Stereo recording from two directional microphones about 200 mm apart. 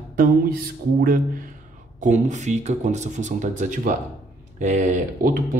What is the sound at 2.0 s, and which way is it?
Speech, 35° right (ahead or behind).